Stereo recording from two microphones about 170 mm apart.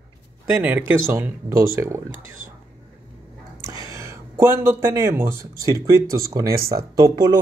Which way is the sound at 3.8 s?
15° right (ahead or behind).